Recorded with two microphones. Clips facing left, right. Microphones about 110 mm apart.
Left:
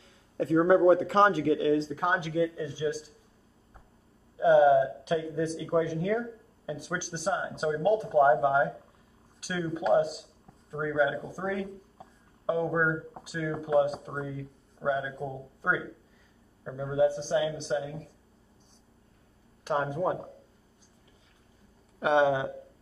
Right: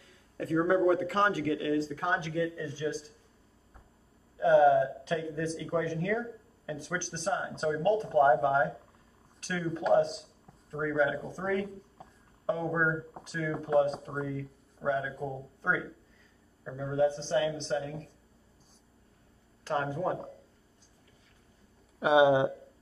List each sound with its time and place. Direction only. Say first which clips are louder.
0.4 s speech: left 4 dB; 25° left (ahead or behind)
4.4 s speech: left 2 dB; 15° left (ahead or behind)
19.6 s speech: left 3 dB; 15° left (ahead or behind)
22.0 s speech: right 1 dB; 5° right (ahead or behind)